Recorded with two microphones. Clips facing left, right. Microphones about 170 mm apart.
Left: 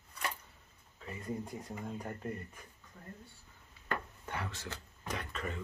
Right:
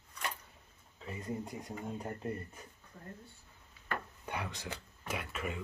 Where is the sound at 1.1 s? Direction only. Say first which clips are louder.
Even; 20° right (ahead or behind).